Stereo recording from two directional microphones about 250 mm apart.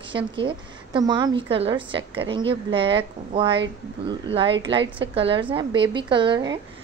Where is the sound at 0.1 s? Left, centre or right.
Centre.